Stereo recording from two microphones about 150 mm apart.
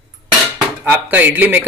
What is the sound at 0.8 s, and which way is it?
Speech, 10° right (ahead or behind).